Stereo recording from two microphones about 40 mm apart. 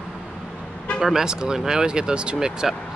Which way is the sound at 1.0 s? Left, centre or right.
Centre.